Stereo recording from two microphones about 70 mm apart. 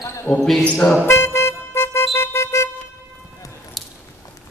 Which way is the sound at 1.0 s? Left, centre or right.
Left.